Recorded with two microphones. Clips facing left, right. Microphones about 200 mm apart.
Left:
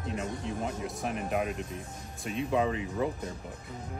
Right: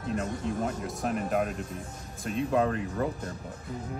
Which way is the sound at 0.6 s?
Centre (ahead or behind).